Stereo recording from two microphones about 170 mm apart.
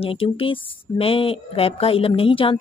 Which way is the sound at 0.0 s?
35° left (ahead or behind).